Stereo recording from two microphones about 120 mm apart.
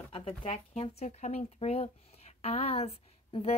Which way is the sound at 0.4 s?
55° left (ahead or behind).